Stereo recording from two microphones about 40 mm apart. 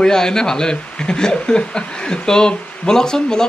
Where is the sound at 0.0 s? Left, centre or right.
Centre.